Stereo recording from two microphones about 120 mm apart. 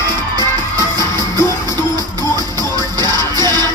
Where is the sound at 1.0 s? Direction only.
35° right (ahead or behind).